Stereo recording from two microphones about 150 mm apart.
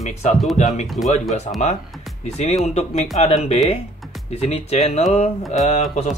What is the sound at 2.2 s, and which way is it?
Speech, 45° left (ahead or behind).